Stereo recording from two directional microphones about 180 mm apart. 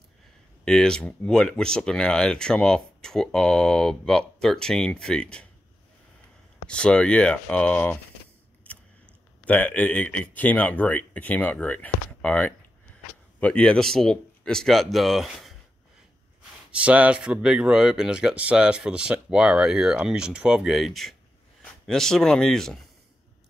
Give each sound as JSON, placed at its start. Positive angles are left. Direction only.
{"t": 0.7, "sound": "speech", "side_deg": 5}
{"t": 6.7, "sound": "speech", "side_deg": 5}
{"t": 8.6, "sound": "a sound", "side_deg": 10}
{"t": 9.5, "sound": "speech", "side_deg": 10}
{"t": 16.7, "sound": "speech", "side_deg": -5}